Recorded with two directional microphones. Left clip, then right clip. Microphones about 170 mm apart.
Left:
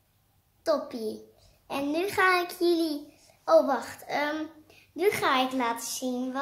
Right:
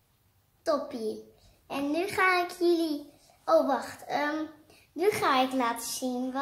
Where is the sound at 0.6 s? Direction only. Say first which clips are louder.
Left 1 dB; 20° left (ahead or behind).